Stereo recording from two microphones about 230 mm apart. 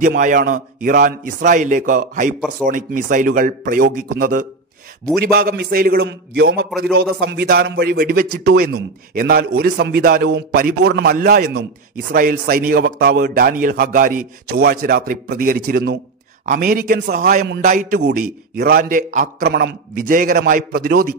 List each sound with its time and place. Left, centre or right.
0.0 s a man's voice: right